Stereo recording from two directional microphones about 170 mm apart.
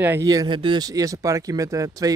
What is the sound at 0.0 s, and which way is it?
Speech, 15° right (ahead or behind).